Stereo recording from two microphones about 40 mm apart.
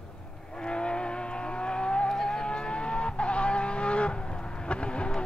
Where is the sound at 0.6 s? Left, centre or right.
Left.